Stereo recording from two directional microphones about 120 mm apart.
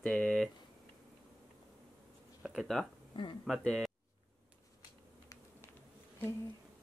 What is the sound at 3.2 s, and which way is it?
Speech, 45° left (ahead or behind).